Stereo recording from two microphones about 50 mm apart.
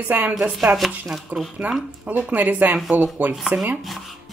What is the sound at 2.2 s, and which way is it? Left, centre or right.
A woman's voice, right.